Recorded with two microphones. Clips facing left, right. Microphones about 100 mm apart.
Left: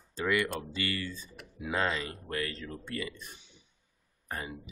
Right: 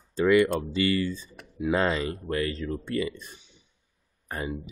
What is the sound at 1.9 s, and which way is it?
Speech, 25° right (ahead or behind).